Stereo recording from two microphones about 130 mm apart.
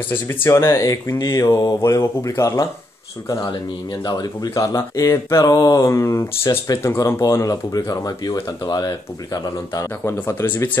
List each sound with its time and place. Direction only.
0.1 s speech: 15° left (ahead or behind)
4.0 s speech: 30° left (ahead or behind)
10.0 s speech: 20° left (ahead or behind)